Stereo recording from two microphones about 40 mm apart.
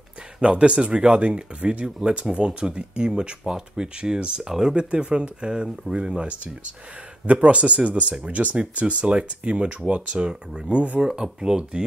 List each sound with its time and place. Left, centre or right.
0.4 s speech: right
10.1 s speech: right
11.0 s speech: centre